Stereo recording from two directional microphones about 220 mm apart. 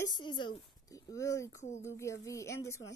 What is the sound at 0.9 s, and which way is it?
A woman's voice, 15° left (ahead or behind).